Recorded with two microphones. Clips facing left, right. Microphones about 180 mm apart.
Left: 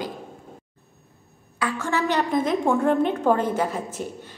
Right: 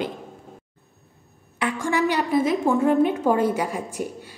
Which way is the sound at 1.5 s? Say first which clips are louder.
Right 2 dB; 15° right (ahead or behind).